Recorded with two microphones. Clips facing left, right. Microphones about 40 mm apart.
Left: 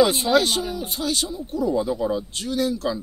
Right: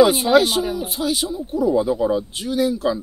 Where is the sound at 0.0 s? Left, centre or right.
Centre.